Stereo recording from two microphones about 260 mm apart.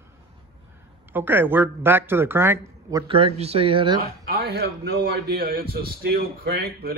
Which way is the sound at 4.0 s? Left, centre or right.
Right.